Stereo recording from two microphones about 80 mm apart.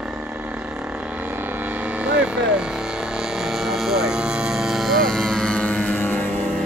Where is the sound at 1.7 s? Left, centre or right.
Centre; by 6.3 s left.